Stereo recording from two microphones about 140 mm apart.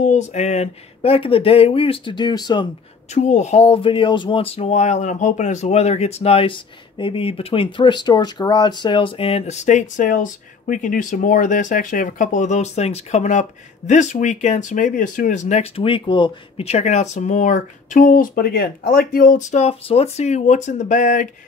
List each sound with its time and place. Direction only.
0.0 s speech: 55° left (ahead or behind); by 2.7 s 30° left (ahead or behind)
3.2 s speech: 55° left (ahead or behind); by 16.6 s 35° left (ahead or behind)
16.6 s speech: 55° left (ahead or behind)